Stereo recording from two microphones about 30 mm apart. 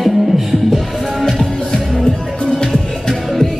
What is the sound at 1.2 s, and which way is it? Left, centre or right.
Music, left.